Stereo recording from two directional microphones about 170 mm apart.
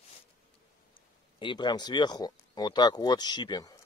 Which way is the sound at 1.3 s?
25° left (ahead or behind).